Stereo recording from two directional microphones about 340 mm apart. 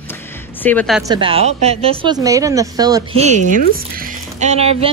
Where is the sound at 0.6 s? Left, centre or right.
Centre.